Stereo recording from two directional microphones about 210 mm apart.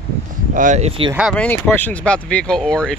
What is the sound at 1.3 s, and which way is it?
Speech, 5° left (ahead or behind).